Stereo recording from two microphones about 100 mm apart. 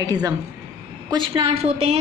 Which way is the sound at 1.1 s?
55° right (ahead or behind).